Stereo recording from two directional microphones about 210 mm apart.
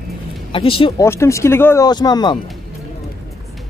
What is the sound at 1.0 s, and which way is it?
Speech, 15° left (ahead or behind).